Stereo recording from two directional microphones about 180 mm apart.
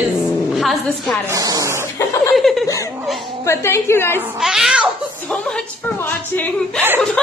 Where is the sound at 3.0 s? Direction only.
Centre (ahead or behind).